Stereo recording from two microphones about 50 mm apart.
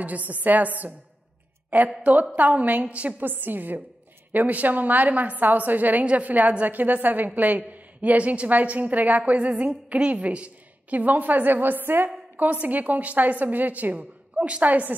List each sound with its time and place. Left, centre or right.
0.0 s a woman's voice: right
2.3 s a woman's voice: right
3.2 s a woman's voice: right
12.4 s a woman's voice: right
14.3 s a sound: right
14.6 s a woman's voice: right